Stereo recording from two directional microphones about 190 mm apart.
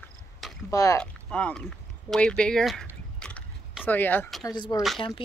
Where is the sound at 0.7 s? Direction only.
15° left (ahead or behind).